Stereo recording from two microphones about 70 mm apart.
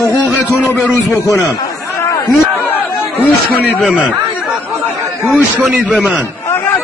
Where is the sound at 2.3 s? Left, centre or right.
Left.